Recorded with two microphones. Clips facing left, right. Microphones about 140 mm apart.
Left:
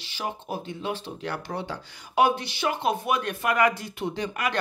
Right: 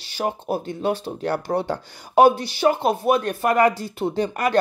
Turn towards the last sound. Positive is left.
turn(degrees=-35)  # may be behind; listen again after turning